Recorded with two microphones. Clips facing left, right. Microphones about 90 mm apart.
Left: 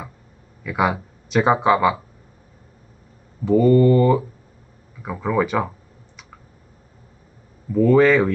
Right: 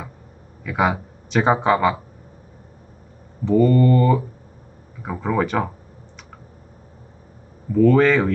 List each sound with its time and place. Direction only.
0.7 s speech: centre (ahead or behind)
3.5 s speech: 10° left (ahead or behind)
5.2 s speech: centre (ahead or behind)
7.7 s speech: 5° left (ahead or behind)